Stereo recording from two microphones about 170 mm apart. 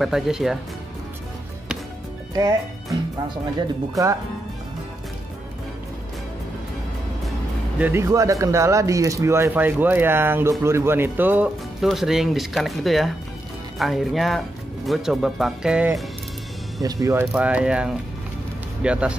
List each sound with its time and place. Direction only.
0.0 s speech: centre (ahead or behind)
2.3 s speech: 20° right (ahead or behind)
7.8 s speech: 15° right (ahead or behind)
16.8 s speech: 20° right (ahead or behind)